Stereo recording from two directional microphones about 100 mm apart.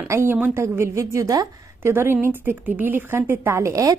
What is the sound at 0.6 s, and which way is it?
A woman's voice, 30° right (ahead or behind).